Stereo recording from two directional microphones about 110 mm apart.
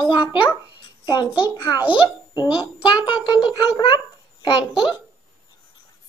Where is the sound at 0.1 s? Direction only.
45° left (ahead or behind).